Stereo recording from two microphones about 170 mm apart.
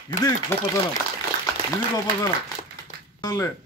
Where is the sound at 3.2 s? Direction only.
20° left (ahead or behind).